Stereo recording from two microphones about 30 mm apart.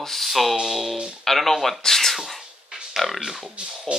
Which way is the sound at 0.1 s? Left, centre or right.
Centre.